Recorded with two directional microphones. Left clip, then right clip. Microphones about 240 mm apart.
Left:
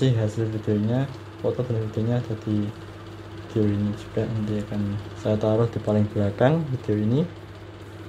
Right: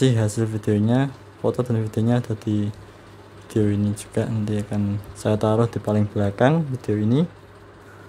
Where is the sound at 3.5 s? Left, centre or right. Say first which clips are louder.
Right 2 dB; right.